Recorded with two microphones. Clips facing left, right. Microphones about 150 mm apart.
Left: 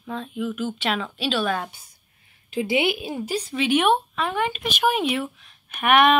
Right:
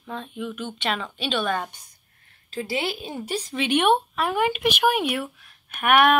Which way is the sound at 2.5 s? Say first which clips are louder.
Left 5 dB; 15° left (ahead or behind).